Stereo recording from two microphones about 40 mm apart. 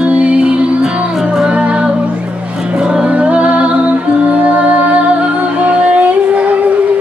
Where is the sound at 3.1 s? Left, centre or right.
Right.